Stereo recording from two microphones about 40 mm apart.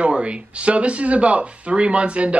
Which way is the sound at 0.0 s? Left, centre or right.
Right.